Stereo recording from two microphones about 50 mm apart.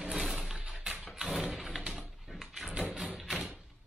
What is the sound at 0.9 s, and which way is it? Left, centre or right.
Dog, centre.